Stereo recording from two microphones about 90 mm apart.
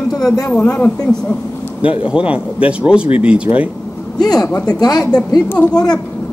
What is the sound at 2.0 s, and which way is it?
Speech, 10° right (ahead or behind).